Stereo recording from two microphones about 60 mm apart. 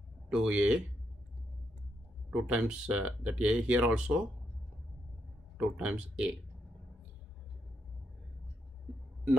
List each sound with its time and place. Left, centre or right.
0.3 s speech: centre
2.3 s speech: centre
5.6 s speech: centre